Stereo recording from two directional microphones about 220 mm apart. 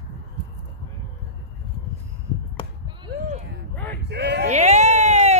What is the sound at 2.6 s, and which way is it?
Basketball bounce, 25° left (ahead or behind).